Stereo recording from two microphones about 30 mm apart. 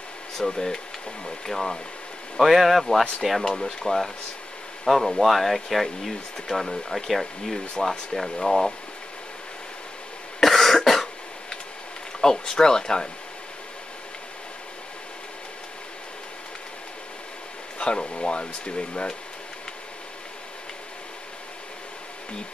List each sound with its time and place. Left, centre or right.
0.4 s speech: centre
2.4 s speech: centre
3.4 s speech: left
3.8 s speech: centre
10.4 s cough: centre
12.2 s speech: left
17.7 s speech: left